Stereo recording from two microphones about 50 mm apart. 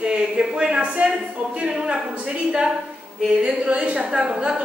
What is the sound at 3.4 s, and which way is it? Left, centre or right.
A woman's voice, right.